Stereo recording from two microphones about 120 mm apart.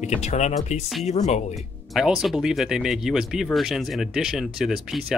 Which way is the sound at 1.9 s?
5° right (ahead or behind).